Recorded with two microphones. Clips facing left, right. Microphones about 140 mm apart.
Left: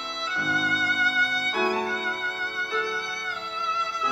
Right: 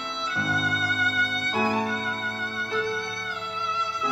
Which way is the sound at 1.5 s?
25° right (ahead or behind).